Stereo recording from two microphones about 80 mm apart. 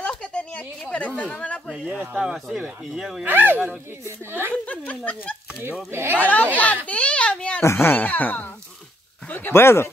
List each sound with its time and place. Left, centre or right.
0.1 s a sound: centre
2.1 s speech: centre
3.3 s speech: right
4.6 s speech: centre
5.9 s speech: right
6.2 s speech: centre
6.9 s a sound: centre
7.6 s speech: left